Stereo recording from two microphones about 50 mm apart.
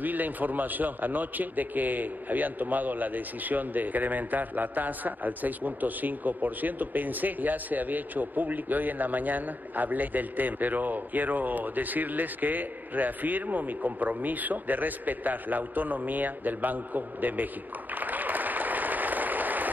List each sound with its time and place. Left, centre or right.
0.0 s a man's voice: right
17.9 s applause: right